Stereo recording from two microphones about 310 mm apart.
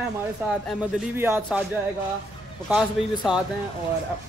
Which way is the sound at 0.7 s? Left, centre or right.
Centre.